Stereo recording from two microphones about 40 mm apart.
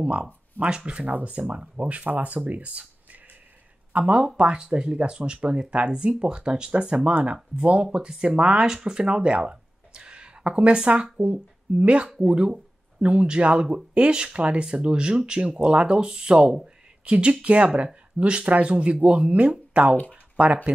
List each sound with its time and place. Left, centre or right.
0.6 s speech: right
1.0 s speech: right
4.0 s speech: right
9.4 s a sound: right
11.3 s speech: right